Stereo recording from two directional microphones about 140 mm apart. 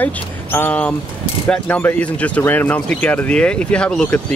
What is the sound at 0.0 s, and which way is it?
Speech, 15° left (ahead or behind).